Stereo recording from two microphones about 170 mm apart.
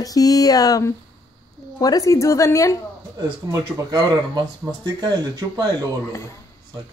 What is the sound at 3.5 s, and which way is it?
Speech, 20° right (ahead or behind).